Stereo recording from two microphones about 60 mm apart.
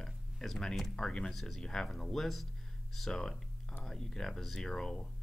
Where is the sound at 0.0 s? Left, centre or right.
Centre.